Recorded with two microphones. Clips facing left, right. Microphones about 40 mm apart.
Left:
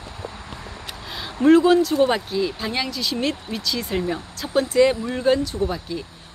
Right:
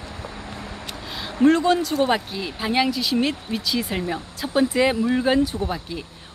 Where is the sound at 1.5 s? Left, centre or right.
Centre.